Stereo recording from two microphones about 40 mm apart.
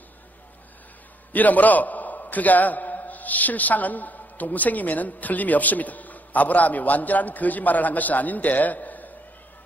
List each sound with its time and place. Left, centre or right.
1.3 s a man's voice: left